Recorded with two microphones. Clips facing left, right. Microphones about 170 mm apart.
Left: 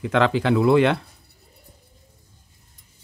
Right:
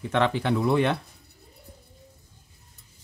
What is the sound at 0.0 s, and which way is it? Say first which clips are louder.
Speech: left 4 dB; 90° left.